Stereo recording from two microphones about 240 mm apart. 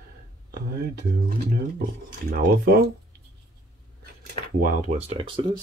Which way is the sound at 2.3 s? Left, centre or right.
Right.